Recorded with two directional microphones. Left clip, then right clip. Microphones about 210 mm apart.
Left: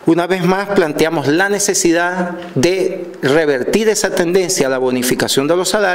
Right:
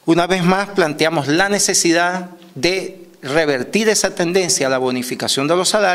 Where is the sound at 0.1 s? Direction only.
30° right (ahead or behind).